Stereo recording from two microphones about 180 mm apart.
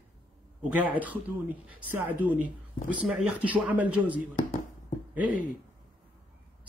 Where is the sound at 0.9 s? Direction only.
10° right (ahead or behind).